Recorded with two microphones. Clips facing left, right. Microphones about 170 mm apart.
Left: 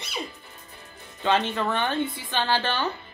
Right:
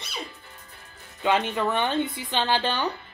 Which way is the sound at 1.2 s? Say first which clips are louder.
Even; 15° right (ahead or behind).